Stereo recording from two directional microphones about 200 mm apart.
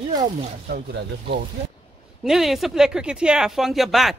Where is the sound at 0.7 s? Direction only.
50° right (ahead or behind).